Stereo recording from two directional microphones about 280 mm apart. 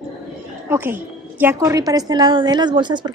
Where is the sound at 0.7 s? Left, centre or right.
Centre.